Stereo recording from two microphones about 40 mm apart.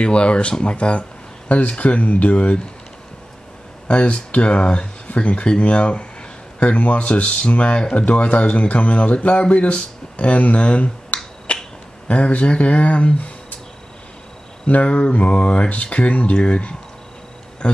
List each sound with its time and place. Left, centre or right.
0.0 s speech: left
3.8 s speech: left
5.0 s speech: left
8.0 s speech: left
11.1 s finger snapping: left
11.5 s finger snapping: left
12.1 s speech: left
14.8 s speech: left